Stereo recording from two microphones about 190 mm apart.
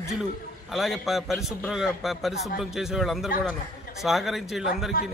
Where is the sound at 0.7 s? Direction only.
Centre (ahead or behind).